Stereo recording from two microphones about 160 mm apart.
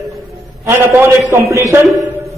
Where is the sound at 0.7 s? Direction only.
15° right (ahead or behind).